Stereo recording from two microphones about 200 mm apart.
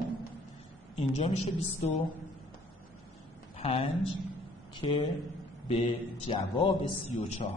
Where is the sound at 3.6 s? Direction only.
30° left (ahead or behind).